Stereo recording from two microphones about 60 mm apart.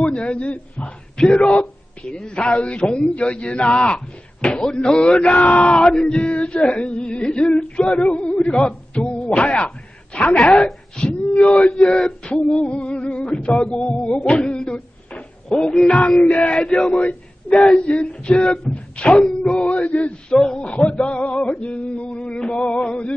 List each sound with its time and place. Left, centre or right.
0.0 s a man's voice: centre
5.7 s a man's voice: centre
6.7 s a man's voice: centre
11.9 s a man's voice: centre
13.7 s a sound: centre
15.6 s a man's voice: centre
16.2 s a man's voice: left
16.9 s a man's voice: left
17.6 s speech: centre
17.8 s speech: centre
18.9 s a sound: centre
19.2 s a man's voice: centre
20.7 s speech: centre